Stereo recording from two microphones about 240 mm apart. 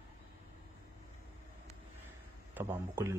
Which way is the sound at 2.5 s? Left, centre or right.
Centre.